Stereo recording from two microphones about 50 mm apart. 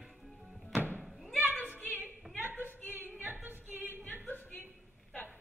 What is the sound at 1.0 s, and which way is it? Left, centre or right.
Thump, centre.